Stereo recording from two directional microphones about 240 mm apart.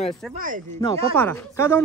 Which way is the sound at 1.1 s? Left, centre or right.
Centre.